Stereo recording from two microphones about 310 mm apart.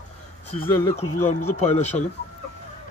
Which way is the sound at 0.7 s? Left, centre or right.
Centre.